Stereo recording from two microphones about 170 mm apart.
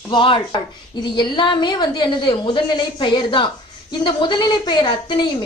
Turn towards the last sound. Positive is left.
turn(degrees=25)  # may be behind; listen again after turning